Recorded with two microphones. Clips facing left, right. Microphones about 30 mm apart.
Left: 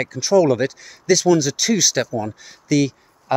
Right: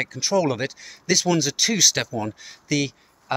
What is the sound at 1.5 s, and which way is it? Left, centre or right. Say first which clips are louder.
Speech: left 2 dB; right.